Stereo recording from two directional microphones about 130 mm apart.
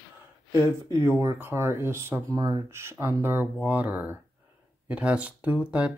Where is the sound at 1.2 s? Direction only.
20° right (ahead or behind).